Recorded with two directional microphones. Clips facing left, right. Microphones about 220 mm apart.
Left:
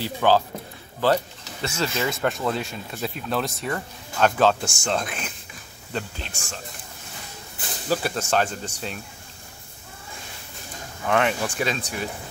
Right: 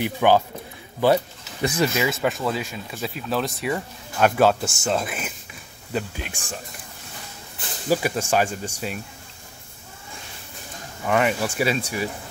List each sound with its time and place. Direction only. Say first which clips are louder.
0.0 s speech: right 2 dB; 15° right (ahead or behind)
2.0 s speech: right 1 dB; centre (ahead or behind)
7.9 s speech: right 2 dB; 10° right (ahead or behind)
11.1 s speech: right 1 dB; 5° right (ahead or behind)